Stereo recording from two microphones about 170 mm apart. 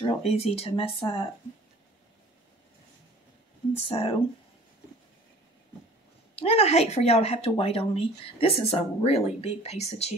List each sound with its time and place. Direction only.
0.0 s speech: 35° left (ahead or behind)
3.7 s speech: 35° left (ahead or behind)
6.3 s speech: 35° left (ahead or behind)